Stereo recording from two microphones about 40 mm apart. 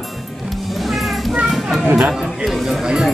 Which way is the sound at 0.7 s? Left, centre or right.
Centre.